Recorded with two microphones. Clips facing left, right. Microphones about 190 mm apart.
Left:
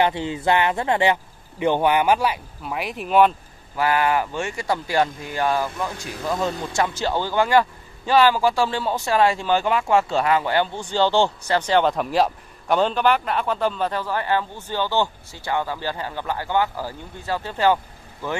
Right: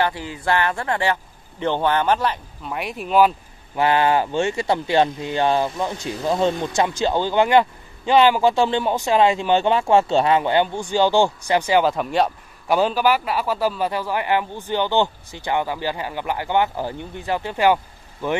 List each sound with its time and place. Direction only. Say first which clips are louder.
0.0 s a man's voice: left 2 dB; 20° left (ahead or behind); by 3.3 s centre (ahead or behind)
3.7 s speech: right 3 dB; 25° right (ahead or behind)